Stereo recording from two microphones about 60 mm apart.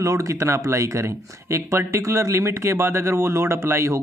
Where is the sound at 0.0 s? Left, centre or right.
Right.